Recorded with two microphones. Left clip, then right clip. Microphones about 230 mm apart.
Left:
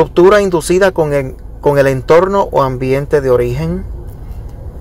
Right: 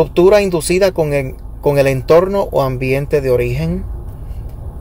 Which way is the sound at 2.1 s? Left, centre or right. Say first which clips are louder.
Left 2 dB; centre.